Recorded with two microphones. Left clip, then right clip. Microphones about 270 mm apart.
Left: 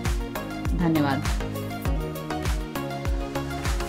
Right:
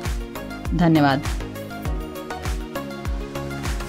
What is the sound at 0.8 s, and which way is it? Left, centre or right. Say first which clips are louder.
Speech: right 7 dB; right.